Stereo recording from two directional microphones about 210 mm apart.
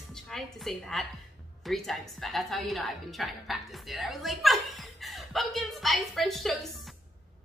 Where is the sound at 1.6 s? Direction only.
Centre (ahead or behind).